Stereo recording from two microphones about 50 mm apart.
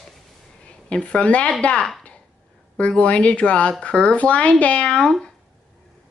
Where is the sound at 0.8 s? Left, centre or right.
Left.